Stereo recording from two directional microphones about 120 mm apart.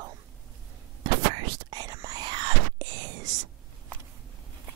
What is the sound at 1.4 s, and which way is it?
Whispering, 35° right (ahead or behind).